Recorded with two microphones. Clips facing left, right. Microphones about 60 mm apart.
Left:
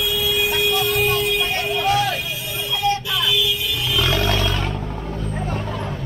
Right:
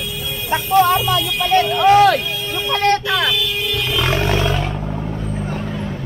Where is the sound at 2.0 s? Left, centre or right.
Right.